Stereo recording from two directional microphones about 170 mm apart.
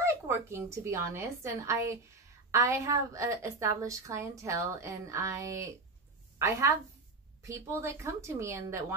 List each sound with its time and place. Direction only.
0.0 s a woman's voice: 15° right (ahead or behind)